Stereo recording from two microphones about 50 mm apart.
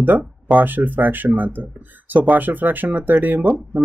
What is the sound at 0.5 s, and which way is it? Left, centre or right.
Speech, right.